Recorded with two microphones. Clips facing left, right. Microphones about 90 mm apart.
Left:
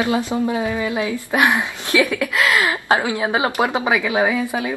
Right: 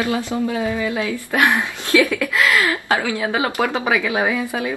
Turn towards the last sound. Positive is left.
turn(degrees=20)  # may be behind; listen again after turning